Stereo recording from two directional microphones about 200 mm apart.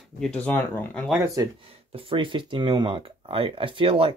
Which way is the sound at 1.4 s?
15° right (ahead or behind).